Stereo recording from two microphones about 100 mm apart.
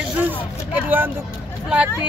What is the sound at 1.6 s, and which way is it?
Speech, 10° right (ahead or behind).